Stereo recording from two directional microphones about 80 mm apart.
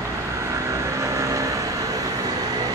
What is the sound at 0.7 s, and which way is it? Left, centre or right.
Vehicle, right.